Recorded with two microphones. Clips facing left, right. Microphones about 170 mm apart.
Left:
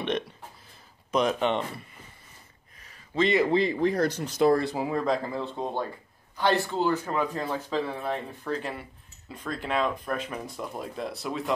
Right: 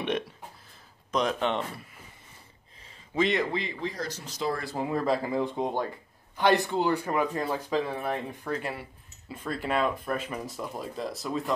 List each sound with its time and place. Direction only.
1.1 s speech: 5° left (ahead or behind)
3.2 s speech: centre (ahead or behind)
3.8 s speech: 60° left (ahead or behind)
4.7 s speech: centre (ahead or behind)
5.3 s speech: 15° right (ahead or behind); by 11.5 s centre (ahead or behind)